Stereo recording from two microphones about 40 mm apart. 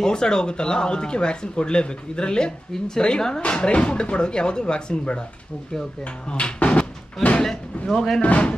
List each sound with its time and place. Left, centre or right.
0.0 s speech: centre
6.2 s speech: left
7.9 s speech: centre
8.2 s speech: left